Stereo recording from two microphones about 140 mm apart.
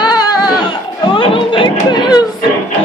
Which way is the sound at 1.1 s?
40° left (ahead or behind).